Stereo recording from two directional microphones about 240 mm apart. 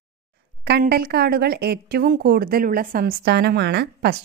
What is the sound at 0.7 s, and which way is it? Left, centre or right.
A woman's voice, right.